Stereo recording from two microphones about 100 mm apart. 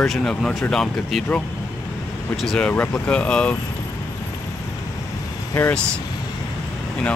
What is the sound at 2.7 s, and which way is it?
Speech, 15° left (ahead or behind).